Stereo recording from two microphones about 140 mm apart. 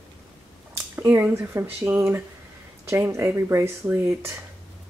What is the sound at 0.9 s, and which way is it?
A woman's voice, 15° right (ahead or behind).